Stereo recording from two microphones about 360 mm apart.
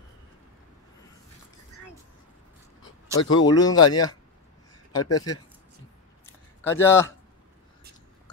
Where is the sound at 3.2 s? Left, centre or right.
Left.